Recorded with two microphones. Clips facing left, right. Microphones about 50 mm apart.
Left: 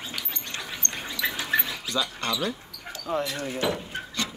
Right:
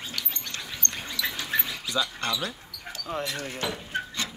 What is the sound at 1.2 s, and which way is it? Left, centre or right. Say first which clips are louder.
Bird: left 4 dB; left.